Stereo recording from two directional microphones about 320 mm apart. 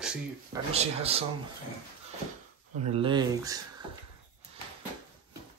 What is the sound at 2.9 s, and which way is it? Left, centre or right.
Speech, centre.